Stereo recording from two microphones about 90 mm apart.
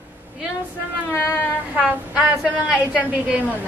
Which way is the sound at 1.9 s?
15° right (ahead or behind).